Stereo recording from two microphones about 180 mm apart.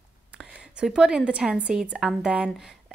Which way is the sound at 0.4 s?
5° right (ahead or behind).